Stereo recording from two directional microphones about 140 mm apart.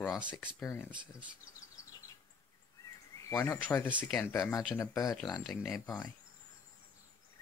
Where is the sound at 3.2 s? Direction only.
20° left (ahead or behind).